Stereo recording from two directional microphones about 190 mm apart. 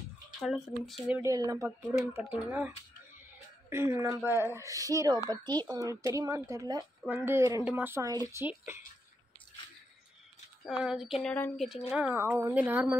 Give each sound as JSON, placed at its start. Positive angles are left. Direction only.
{"t": 0.4, "sound": "speech", "side_deg": 0}
{"t": 1.2, "sound": "speech", "side_deg": -20}
{"t": 3.7, "sound": "speech", "side_deg": -15}
{"t": 10.8, "sound": "speech", "side_deg": -5}
{"t": 11.9, "sound": "speech", "side_deg": -10}